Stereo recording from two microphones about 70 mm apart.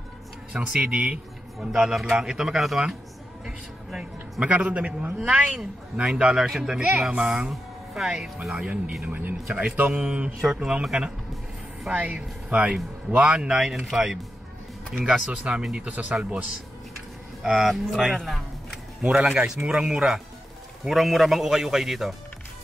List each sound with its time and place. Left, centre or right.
0.5 s a man's voice: centre
4.5 s a man's voice: right
9.0 s a man's voice: right
11.9 s a man's voice: right
17.4 s a man's voice: centre
19.0 s a man's voice: centre